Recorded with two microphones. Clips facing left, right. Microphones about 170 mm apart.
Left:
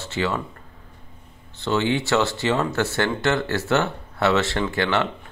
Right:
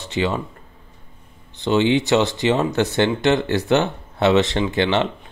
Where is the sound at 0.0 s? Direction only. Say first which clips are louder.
Right 3 dB; 15° right (ahead or behind).